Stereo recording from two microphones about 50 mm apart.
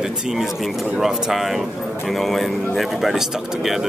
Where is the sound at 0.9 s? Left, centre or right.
Centre.